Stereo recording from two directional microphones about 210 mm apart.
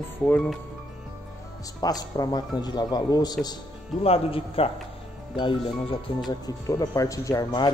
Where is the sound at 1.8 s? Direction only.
20° left (ahead or behind).